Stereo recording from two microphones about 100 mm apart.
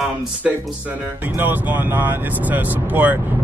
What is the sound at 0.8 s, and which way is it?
Speech, 20° right (ahead or behind).